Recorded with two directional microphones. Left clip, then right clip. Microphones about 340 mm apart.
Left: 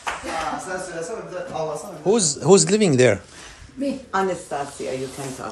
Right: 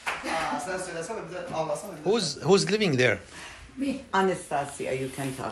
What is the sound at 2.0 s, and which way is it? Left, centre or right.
A man's voice, centre.